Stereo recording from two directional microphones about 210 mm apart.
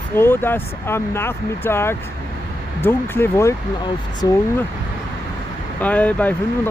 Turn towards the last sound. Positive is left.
turn(degrees=5)  # may be behind; listen again after turning